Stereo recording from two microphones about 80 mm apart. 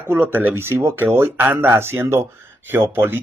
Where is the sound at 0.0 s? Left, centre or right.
Right.